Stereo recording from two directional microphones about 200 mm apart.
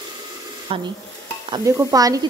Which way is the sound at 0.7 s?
30° right (ahead or behind).